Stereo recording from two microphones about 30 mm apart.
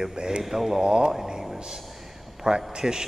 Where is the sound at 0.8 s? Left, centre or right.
Right.